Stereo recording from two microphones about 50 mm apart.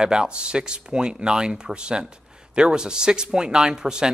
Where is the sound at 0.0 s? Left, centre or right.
Centre.